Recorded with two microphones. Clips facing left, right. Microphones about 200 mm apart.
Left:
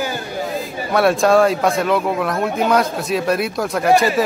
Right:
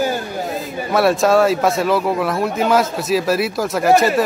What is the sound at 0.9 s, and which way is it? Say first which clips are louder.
Speech: even; centre (ahead or behind).